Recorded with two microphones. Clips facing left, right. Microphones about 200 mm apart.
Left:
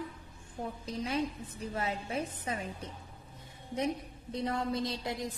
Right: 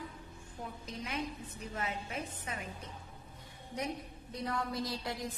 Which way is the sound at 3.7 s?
25° left (ahead or behind).